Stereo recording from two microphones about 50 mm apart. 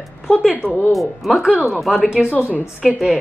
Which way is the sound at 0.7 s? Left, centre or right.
Left.